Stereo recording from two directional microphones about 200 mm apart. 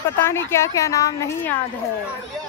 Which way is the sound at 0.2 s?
15° left (ahead or behind).